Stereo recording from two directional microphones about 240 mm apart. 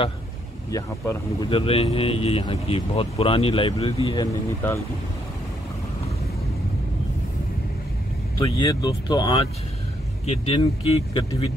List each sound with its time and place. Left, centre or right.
0.7 s speech: centre
8.4 s speech: centre